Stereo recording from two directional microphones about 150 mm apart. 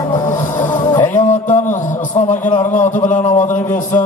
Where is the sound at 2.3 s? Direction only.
55° left (ahead or behind).